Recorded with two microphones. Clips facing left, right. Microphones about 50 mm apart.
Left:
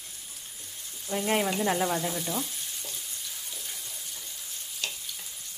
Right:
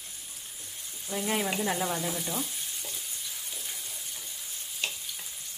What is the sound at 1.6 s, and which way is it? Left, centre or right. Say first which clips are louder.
Frying: left 3 dB; centre.